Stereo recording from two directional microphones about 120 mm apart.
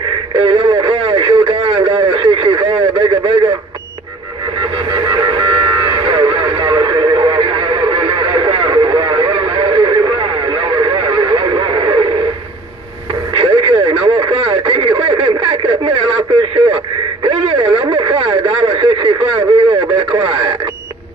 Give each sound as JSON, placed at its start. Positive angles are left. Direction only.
{"t": 0.4, "sound": "radio", "side_deg": -45}
{"t": 4.6, "sound": "music", "side_deg": -40}
{"t": 13.3, "sound": "radio", "side_deg": -45}